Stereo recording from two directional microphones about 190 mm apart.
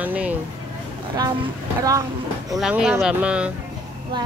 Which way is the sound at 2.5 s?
5° right (ahead or behind).